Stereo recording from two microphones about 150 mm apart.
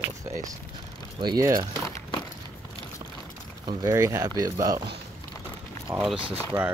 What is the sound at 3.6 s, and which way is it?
Speech, 20° right (ahead or behind).